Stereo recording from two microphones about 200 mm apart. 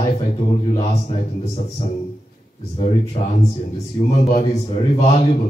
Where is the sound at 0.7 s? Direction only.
30° left (ahead or behind).